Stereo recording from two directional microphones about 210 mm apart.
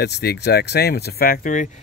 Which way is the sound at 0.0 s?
50° left (ahead or behind).